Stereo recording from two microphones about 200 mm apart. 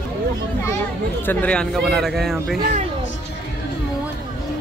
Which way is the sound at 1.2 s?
5° left (ahead or behind).